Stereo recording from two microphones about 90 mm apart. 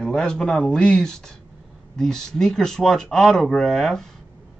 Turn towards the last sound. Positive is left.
turn(degrees=0)  # may be behind; listen again after turning